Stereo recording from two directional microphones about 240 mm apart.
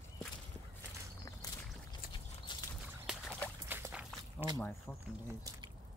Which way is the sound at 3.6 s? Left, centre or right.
Centre.